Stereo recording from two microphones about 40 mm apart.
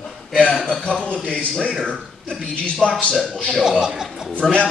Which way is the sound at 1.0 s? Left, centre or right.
Left.